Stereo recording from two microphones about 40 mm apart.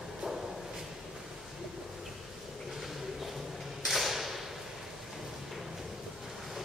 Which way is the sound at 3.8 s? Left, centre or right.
Centre.